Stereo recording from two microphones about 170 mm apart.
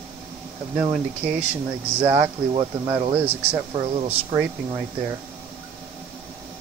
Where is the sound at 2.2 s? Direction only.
30° right (ahead or behind).